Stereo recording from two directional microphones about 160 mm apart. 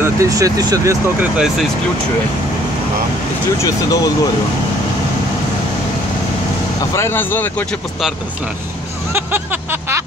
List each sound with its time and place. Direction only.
0.0 s speech: 20° right (ahead or behind)
1.3 s speech: 5° right (ahead or behind)
3.6 s speech: 20° left (ahead or behind)
7.0 s speech: 15° left (ahead or behind)
9.1 s a sound: 15° right (ahead or behind)